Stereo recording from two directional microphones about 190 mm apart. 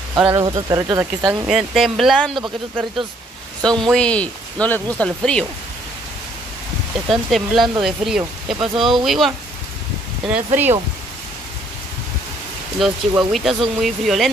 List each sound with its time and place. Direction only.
0.3 s speech: 20° right (ahead or behind)
1.5 s speech: centre (ahead or behind)
3.8 s speech: 5° left (ahead or behind)
7.1 s speech: centre (ahead or behind)
10.3 s speech: 10° right (ahead or behind)
12.7 s speech: centre (ahead or behind)